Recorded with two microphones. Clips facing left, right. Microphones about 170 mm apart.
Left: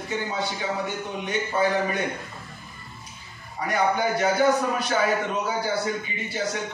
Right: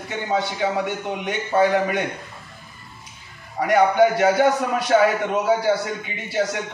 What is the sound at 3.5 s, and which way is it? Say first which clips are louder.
A man's voice: right 8 dB; 85° right.